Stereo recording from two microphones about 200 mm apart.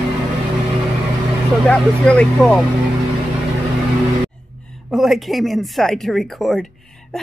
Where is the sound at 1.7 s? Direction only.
5° left (ahead or behind).